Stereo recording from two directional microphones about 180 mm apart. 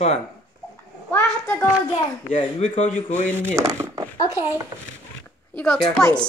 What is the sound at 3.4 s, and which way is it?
Speech, 15° right (ahead or behind).